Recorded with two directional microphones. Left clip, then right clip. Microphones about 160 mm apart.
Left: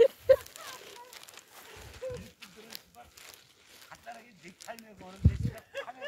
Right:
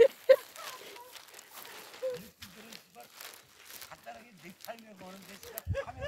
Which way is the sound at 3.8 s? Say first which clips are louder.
Left 3 dB; 25° right (ahead or behind).